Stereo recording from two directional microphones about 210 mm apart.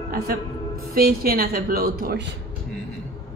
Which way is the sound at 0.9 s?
45° right (ahead or behind).